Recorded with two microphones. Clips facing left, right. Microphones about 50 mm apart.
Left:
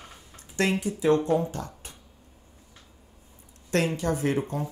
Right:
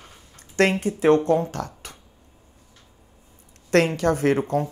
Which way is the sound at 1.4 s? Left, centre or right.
Right.